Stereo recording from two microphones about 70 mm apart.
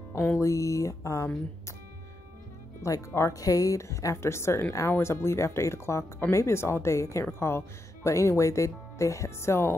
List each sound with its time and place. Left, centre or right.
0.4 s speech: left
2.8 s speech: left